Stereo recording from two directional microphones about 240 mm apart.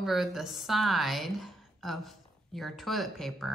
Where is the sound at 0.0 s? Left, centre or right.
Centre.